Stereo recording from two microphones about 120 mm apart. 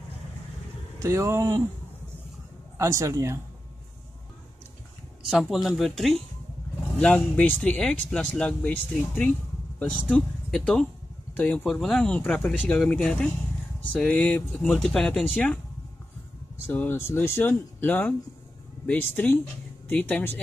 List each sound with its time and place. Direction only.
0.9 s speech: 25° right (ahead or behind)
2.8 s speech: 25° right (ahead or behind)
5.3 s speech: centre (ahead or behind)
16.6 s speech: 15° left (ahead or behind)